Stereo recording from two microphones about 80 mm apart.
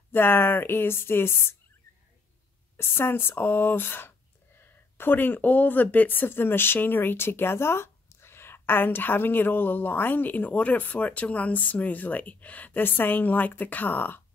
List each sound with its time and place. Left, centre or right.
0.1 s speech: left
2.8 s speech: left